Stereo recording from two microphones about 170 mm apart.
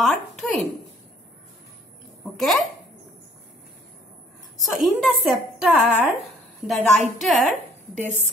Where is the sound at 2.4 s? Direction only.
Centre (ahead or behind).